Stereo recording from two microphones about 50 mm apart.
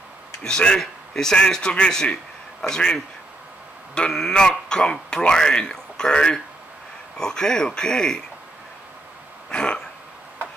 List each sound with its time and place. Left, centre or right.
0.4 s speech: centre
9.5 s throat clearing: centre